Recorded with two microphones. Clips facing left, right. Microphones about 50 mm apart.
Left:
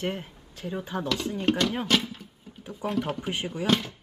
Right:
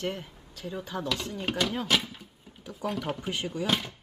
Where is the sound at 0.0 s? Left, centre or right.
Centre.